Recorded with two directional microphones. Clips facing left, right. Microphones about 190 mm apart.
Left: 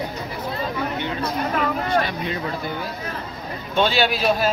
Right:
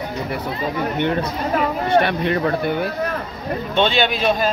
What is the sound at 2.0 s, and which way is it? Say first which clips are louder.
Speech: right 7 dB; 60° right (ahead or behind).